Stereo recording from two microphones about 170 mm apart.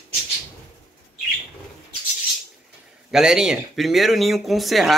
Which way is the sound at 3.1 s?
5° right (ahead or behind).